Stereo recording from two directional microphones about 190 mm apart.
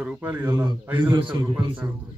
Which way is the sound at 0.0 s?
5° right (ahead or behind).